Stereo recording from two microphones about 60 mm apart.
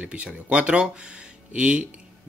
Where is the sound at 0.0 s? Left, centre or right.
Right.